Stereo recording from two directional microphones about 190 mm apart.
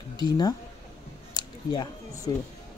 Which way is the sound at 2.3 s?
20° left (ahead or behind).